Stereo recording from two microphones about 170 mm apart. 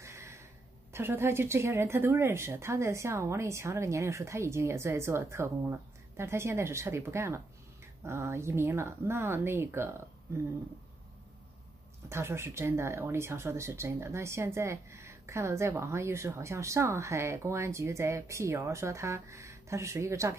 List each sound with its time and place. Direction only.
0.0 s a sound: 15° right (ahead or behind)
0.9 s speech: 15° right (ahead or behind)
12.1 s speech: 15° right (ahead or behind)